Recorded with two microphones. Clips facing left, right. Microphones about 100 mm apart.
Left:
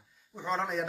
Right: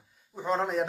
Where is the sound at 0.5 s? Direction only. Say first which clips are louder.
Right 4 dB; 5° right (ahead or behind).